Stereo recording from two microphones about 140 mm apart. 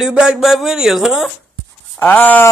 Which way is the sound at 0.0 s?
5° right (ahead or behind).